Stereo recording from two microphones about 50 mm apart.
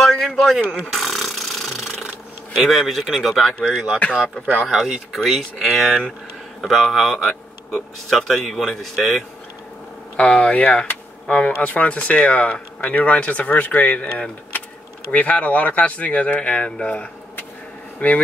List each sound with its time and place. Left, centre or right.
0.0 s a sound: centre
0.6 s speech: centre
0.9 s a sound: centre
2.5 s speech: centre
3.6 s speech: centre
10.1 s speech: left